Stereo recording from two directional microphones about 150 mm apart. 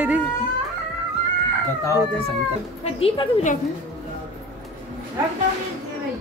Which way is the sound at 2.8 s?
40° left (ahead or behind).